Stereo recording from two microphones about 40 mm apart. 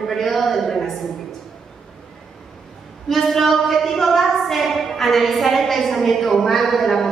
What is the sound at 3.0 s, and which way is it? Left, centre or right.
A woman's voice, centre.